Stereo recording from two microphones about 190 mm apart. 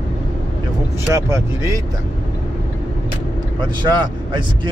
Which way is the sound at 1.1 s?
15° right (ahead or behind).